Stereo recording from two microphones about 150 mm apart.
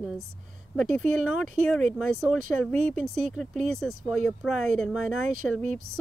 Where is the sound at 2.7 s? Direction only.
50° right (ahead or behind).